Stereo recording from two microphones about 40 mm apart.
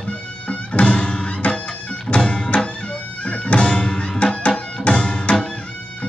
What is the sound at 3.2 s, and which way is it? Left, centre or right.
Music, left.